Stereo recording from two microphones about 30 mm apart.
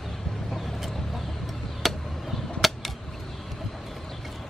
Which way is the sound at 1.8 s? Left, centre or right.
Centre.